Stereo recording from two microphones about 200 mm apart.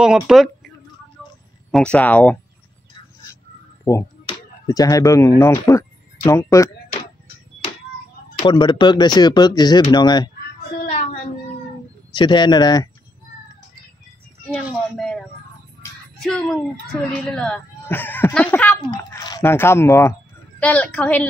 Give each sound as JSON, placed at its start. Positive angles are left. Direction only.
{"t": 0.0, "sound": "speech", "side_deg": 0}
{"t": 1.7, "sound": "speech", "side_deg": 5}
{"t": 3.9, "sound": "speech", "side_deg": 15}
{"t": 8.4, "sound": "speech", "side_deg": 25}
{"t": 12.1, "sound": "speech", "side_deg": 20}
{"t": 14.7, "sound": "a sound", "side_deg": 0}
{"t": 16.2, "sound": "speech", "side_deg": 5}
{"t": 18.8, "sound": "speech", "side_deg": 20}